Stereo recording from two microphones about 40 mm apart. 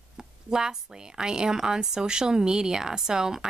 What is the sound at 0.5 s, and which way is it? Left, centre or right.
Speech, centre.